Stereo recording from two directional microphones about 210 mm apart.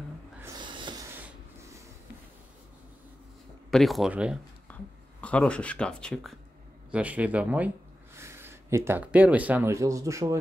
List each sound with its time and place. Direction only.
0.4 s snort: 20° right (ahead or behind)
3.7 s speech: centre (ahead or behind)
4.7 s a sound: 5° left (ahead or behind)
5.2 s speech: 5° left (ahead or behind); by 10.4 s 15° right (ahead or behind)